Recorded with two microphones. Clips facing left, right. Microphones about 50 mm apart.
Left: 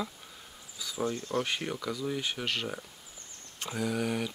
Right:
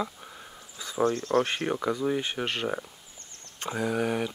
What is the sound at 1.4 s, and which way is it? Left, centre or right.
Speech, right.